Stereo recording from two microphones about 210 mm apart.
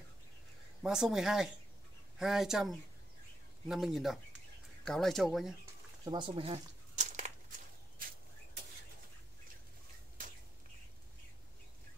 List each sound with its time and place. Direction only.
0.8 s speech: centre (ahead or behind)
6.0 s crumpling: 20° right (ahead or behind)